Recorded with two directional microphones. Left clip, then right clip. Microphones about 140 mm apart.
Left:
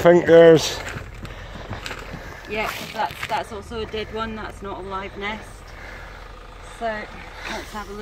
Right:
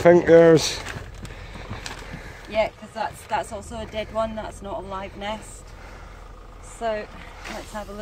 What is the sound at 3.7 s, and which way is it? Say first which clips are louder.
Speech: left 2 dB; 55° right (ahead or behind).